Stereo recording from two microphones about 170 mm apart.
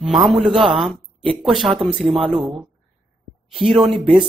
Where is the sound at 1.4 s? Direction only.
Centre (ahead or behind).